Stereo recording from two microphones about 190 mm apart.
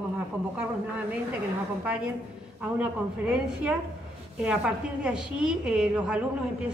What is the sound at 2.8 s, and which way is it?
A woman's voice, 5° right (ahead or behind).